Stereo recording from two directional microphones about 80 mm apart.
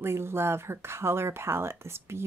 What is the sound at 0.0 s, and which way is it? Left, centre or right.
Speech, right.